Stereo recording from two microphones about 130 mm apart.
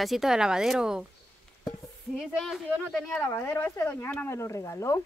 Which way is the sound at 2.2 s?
Centre (ahead or behind).